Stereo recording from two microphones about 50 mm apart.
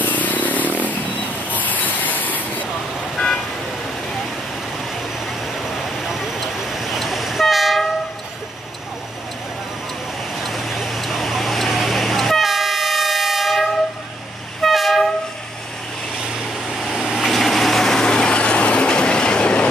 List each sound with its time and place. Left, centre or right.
0.0 s motorcycle: left
1.5 s vehicle: left
5.6 s vehicle: centre
10.4 s vehicle: centre
14.6 s train: centre
16.6 s vehicle: centre
18.0 s vehicle: centre